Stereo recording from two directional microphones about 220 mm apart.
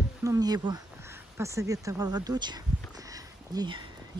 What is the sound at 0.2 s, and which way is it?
Speech, 15° right (ahead or behind).